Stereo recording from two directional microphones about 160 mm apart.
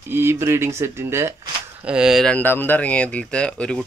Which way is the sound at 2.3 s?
10° left (ahead or behind).